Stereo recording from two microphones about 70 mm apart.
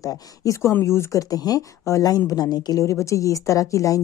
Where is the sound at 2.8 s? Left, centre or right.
Left.